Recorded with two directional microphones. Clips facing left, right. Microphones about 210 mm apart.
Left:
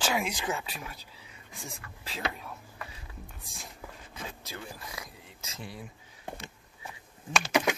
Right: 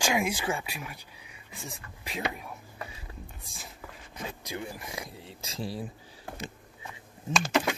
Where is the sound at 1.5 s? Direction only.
Centre (ahead or behind).